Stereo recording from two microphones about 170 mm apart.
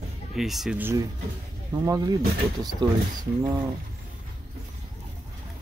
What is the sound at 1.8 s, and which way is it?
Speech, 20° right (ahead or behind).